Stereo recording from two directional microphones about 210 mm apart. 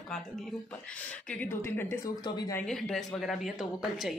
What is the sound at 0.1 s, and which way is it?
Speech, centre (ahead or behind).